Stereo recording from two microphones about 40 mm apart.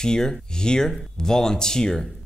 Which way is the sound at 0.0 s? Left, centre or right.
Centre.